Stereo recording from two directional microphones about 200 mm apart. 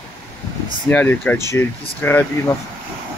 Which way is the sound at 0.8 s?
10° left (ahead or behind).